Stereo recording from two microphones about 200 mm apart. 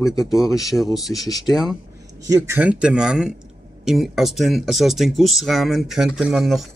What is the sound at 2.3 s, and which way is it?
Speech, 10° right (ahead or behind).